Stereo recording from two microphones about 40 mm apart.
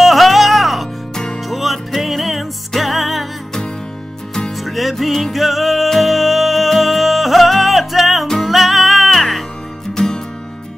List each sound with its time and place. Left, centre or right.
0.0 s music: centre
1.1 s music: centre
1.5 s music: centre
4.6 s music: centre
9.9 s music: centre